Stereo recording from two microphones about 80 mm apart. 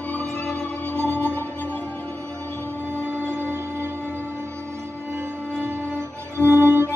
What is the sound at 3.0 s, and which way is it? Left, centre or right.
Music, right.